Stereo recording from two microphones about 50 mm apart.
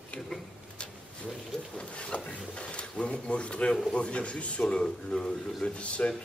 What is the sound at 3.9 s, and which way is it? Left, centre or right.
A man's voice, left.